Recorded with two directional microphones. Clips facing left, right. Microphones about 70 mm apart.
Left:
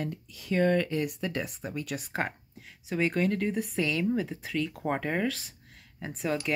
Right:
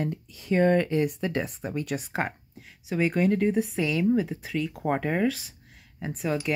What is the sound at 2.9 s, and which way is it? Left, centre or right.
Speech, centre.